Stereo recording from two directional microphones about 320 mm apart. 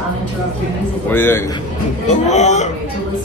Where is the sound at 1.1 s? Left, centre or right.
Centre.